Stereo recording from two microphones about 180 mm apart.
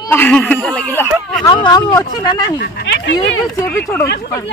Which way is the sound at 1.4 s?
25° left (ahead or behind).